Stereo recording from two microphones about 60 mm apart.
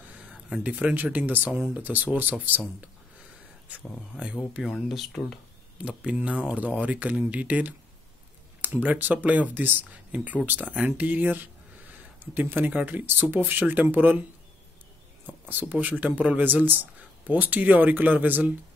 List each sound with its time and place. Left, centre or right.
0.7 s speech: right
4.2 s speech: centre
4.6 s speech: centre
5.8 s speech: centre
12.4 s speech: right
15.2 s speech: right